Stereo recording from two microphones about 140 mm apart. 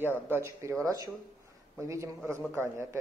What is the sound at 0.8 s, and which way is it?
A man's voice, 25° right (ahead or behind).